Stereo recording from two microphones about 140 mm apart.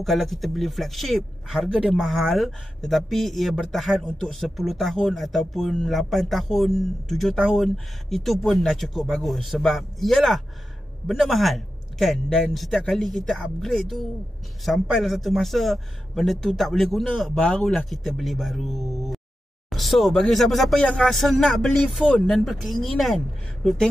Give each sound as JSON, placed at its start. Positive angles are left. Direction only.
{"t": 0.0, "sound": "a woman's voice", "side_deg": 0}